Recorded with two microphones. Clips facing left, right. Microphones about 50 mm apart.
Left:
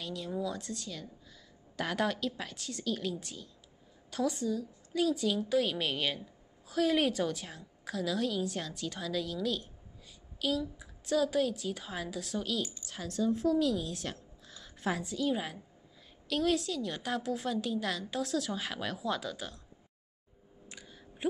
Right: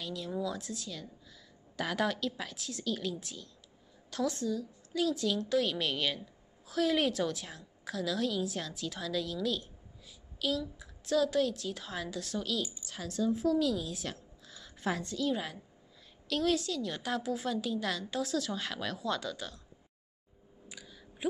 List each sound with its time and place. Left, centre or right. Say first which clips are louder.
0.0 s a woman's voice: even; centre